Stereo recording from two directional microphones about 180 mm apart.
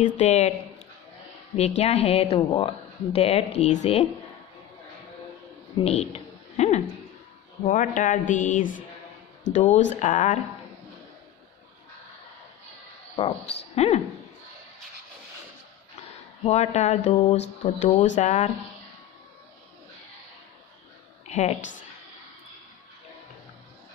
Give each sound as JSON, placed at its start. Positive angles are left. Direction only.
{"t": 0.0, "sound": "speech", "side_deg": 40}
{"t": 1.8, "sound": "speech", "side_deg": 35}
{"t": 5.8, "sound": "a sound", "side_deg": 35}
{"t": 7.6, "sound": "speech", "side_deg": 45}
{"t": 13.1, "sound": "speech", "side_deg": 35}
{"t": 16.4, "sound": "speech", "side_deg": 40}
{"t": 21.3, "sound": "a woman's voice", "side_deg": 40}